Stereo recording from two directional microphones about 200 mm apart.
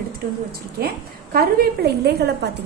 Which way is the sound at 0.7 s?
50° right (ahead or behind).